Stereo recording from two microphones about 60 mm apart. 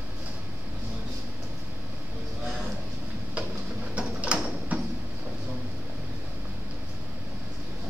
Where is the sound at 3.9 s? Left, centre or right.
Centre.